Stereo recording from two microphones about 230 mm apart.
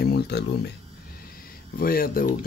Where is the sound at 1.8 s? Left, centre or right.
Left.